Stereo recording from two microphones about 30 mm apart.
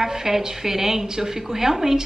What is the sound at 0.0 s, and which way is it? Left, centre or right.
A woman's voice, centre.